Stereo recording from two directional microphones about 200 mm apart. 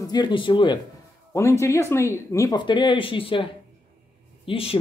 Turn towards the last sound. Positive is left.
turn(degrees=30)  # may be behind; listen again after turning